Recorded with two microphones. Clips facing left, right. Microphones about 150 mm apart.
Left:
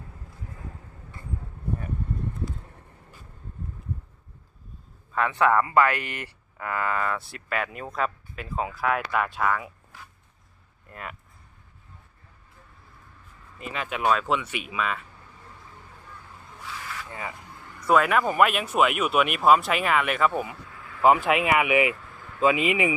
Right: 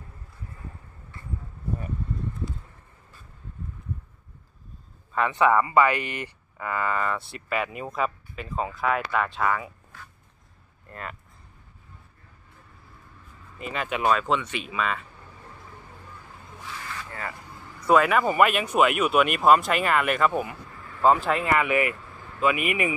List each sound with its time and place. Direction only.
5.1 s speech: centre (ahead or behind)
10.9 s speech: 5° left (ahead or behind)
13.6 s speech: centre (ahead or behind)
16.8 s rub: 10° left (ahead or behind)
17.7 s speech: centre (ahead or behind)
21.0 s speech: 10° left (ahead or behind)